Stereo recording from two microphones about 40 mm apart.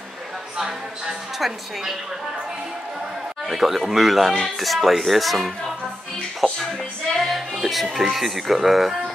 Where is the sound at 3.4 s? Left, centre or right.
Centre.